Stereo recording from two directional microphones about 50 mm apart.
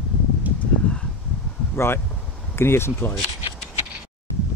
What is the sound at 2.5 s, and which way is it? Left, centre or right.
Speech, left.